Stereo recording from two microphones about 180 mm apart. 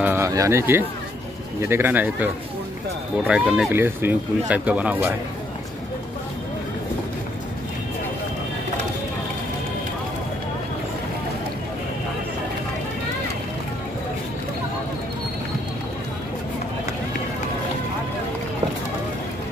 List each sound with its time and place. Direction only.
0.0 s speech: 15° right (ahead or behind)
3.3 s speech: 5° right (ahead or behind)